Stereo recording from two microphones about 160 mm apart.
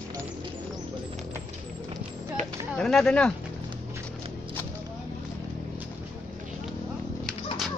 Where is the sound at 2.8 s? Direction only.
5° left (ahead or behind).